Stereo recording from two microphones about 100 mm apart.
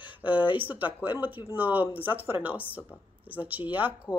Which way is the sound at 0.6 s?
15° right (ahead or behind).